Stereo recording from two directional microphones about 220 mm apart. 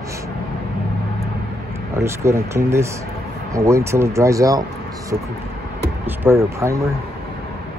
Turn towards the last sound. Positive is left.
turn(degrees=-10)  # may be behind; listen again after turning